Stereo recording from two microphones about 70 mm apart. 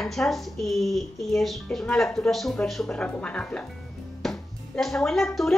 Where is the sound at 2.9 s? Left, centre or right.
Centre.